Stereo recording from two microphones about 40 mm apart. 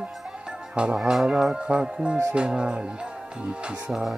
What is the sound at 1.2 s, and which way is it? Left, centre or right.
Speech, centre.